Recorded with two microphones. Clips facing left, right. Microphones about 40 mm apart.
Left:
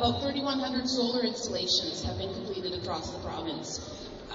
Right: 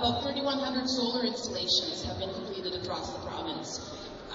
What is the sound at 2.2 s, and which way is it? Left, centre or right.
Speech, right.